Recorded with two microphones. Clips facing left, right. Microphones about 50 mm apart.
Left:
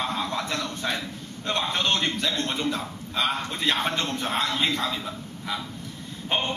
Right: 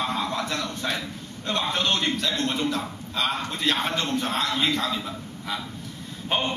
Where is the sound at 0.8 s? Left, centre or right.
Centre.